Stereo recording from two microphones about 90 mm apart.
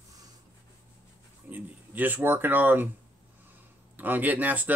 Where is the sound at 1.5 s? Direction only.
20° right (ahead or behind).